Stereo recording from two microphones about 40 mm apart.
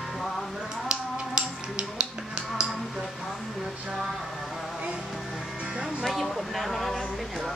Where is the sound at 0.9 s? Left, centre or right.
Right.